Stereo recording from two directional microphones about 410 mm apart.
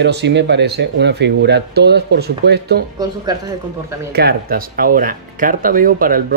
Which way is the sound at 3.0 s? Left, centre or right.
Centre.